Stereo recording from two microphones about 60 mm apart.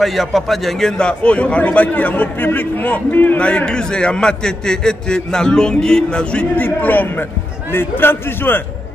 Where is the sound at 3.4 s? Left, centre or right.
Centre; by 8.6 s left.